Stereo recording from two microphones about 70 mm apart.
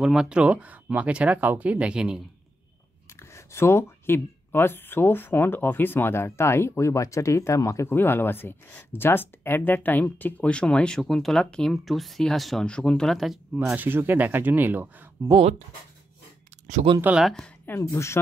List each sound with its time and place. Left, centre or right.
0.0 s speech: centre
3.2 s speech: left
7.9 s speech: left; by 11.0 s centre
11.0 s speech: centre
13.7 s speech: right
17.1 s speech: right
17.9 s speech: left